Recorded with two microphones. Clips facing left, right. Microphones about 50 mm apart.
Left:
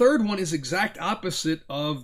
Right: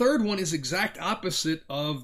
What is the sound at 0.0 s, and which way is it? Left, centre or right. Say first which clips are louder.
Speech: left 4 dB; centre.